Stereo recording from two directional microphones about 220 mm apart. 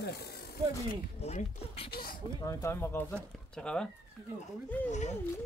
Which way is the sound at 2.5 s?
15° left (ahead or behind).